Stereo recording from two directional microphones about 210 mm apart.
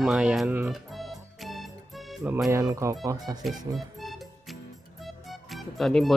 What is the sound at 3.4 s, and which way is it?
Music, centre (ahead or behind).